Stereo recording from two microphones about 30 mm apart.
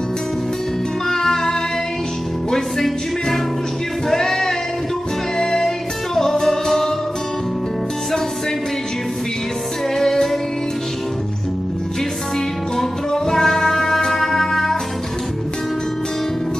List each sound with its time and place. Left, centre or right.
1.0 s music: centre
4.1 s a sound: centre
5.4 s music: centre
12.7 s music: centre